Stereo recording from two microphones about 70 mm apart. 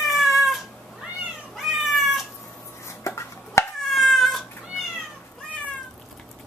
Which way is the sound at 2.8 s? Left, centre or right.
Left.